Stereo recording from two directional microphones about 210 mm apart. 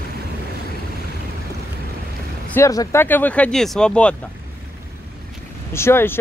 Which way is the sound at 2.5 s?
15° left (ahead or behind).